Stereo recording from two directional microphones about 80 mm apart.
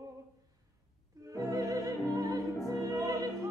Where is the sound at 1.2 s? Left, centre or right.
Right.